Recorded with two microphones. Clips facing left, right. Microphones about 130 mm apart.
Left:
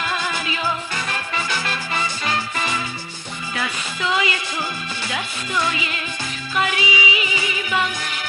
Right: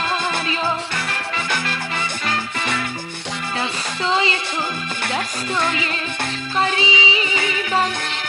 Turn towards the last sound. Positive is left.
turn(degrees=-30)  # may be behind; listen again after turning